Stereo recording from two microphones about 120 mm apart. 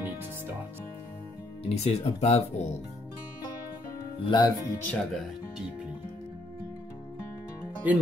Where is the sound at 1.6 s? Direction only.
60° left (ahead or behind).